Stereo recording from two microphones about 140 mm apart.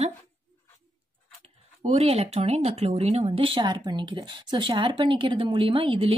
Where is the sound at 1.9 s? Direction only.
45° right (ahead or behind).